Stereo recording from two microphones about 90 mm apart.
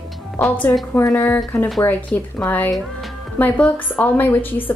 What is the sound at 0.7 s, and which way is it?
Speech, 40° left (ahead or behind).